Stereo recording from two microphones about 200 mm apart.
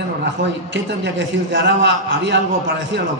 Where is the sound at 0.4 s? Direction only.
65° right (ahead or behind).